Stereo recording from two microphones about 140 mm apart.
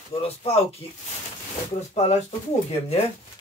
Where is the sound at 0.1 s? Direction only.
45° left (ahead or behind).